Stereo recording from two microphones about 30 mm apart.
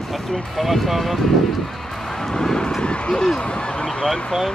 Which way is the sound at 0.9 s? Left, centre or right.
Centre.